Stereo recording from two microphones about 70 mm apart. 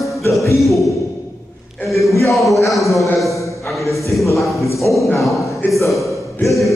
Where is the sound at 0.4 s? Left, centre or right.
Left.